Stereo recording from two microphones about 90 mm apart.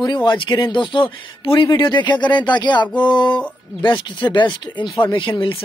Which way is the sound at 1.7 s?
55° left (ahead or behind).